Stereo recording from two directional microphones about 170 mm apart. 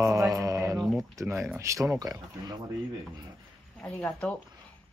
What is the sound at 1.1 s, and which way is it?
Speech, 15° right (ahead or behind).